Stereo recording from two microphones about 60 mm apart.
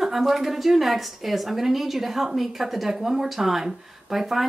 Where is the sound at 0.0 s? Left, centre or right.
Centre.